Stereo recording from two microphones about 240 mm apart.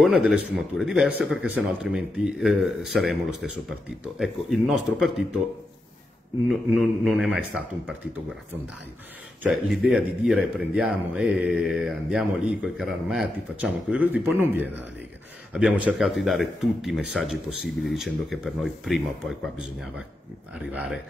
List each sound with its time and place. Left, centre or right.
0.0 s speech: centre
6.7 s speech: centre
9.4 s speech: centre